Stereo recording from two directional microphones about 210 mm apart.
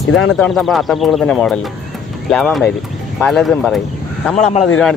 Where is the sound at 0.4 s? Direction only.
Centre (ahead or behind).